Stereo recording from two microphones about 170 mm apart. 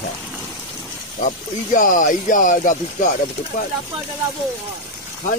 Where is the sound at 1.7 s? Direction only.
50° left (ahead or behind).